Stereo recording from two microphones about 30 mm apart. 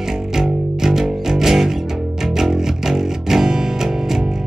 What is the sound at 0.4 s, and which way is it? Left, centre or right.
Music, centre.